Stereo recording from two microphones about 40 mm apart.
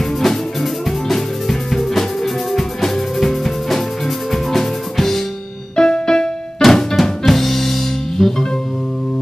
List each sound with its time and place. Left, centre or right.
0.0 s music: centre
5.8 s keyboard: centre
6.6 s music: centre